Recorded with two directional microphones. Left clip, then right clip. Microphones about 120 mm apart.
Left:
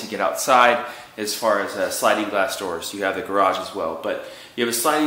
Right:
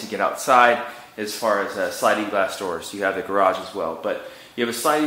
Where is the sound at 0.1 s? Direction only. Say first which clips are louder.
Even; 20° right (ahead or behind).